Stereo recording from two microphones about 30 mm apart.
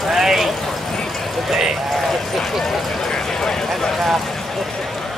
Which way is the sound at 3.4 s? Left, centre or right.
Centre.